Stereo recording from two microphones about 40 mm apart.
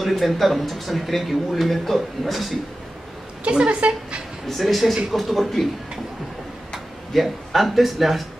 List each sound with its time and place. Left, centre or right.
0.0 s speech: centre
3.5 s speech: right
4.5 s speech: centre
7.2 s speech: centre